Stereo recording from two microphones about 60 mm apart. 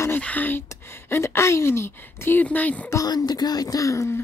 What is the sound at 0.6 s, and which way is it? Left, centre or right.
Speech, left.